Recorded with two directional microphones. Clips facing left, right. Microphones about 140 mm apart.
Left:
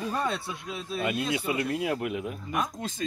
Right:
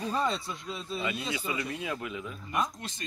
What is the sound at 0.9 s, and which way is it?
Speech, 60° left (ahead or behind).